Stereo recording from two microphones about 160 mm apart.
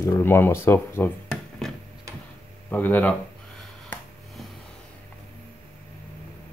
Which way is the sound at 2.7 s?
10° left (ahead or behind).